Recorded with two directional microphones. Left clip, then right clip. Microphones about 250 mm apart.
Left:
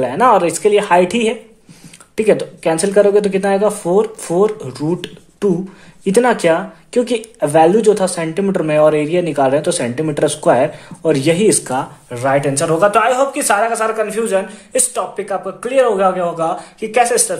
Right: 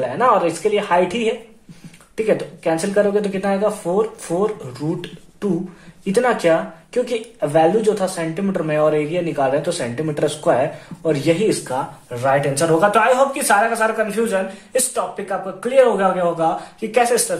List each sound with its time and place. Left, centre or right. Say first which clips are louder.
0.0 s speech: left 4 dB; left